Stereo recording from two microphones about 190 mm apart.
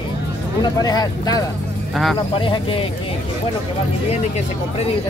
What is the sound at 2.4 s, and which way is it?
Speech, 25° left (ahead or behind).